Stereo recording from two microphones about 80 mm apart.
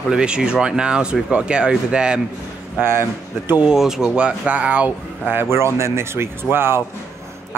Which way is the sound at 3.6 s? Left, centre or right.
Centre.